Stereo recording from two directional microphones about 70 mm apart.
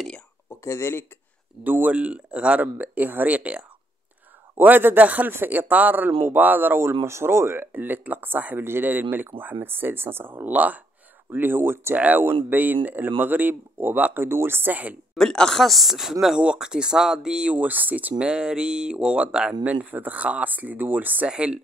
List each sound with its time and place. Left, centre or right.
0.5 s speech: left
1.6 s speech: right
15.1 s speech: centre
17.6 s speech: right
18.1 s speech: centre
21.3 s speech: centre